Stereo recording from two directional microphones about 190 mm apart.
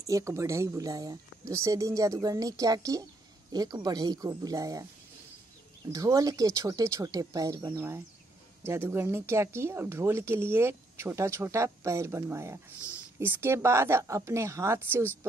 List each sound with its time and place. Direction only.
0.0 s speech: 15° right (ahead or behind)
5.9 s speech: 20° right (ahead or behind)